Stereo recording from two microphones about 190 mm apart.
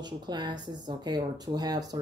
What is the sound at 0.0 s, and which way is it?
Speech, 20° right (ahead or behind).